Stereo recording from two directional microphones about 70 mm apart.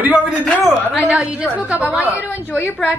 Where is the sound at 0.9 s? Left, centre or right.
Centre.